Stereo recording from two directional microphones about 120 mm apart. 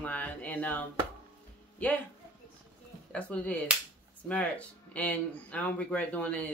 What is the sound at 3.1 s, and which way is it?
A woman's voice, 10° left (ahead or behind).